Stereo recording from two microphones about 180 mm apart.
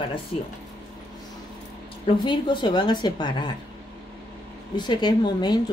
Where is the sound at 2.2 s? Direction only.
25° left (ahead or behind).